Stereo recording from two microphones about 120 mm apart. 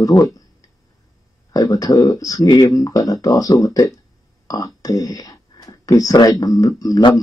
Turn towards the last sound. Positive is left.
turn(degrees=30)  # may be behind; listen again after turning